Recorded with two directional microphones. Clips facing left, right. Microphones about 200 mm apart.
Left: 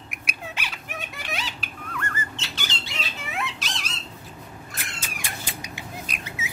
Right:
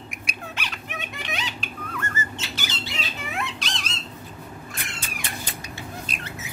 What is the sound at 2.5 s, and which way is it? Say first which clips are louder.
Squawk: right 2 dB; 5° right (ahead or behind).